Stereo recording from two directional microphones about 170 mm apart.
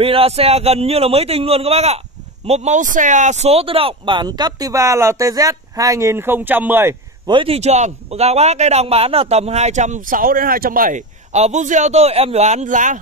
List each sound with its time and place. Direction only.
0.0 s a man's voice: 35° right (ahead or behind); by 7.0 s 15° right (ahead or behind)
7.2 s a man's voice: 30° right (ahead or behind); by 13.0 s 50° right (ahead or behind)